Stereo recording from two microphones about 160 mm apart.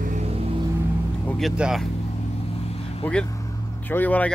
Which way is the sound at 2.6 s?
40° left (ahead or behind).